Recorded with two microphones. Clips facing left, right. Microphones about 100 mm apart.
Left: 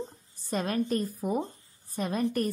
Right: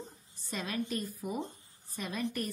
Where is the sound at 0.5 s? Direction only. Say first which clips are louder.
Left 7 dB; 40° left (ahead or behind).